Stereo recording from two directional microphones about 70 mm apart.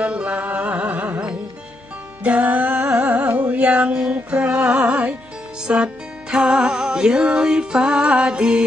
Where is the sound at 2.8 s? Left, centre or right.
Centre.